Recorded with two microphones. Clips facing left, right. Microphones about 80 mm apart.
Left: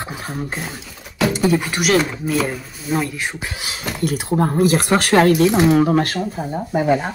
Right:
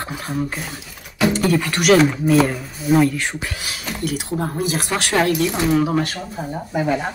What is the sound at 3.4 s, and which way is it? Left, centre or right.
Speech, centre.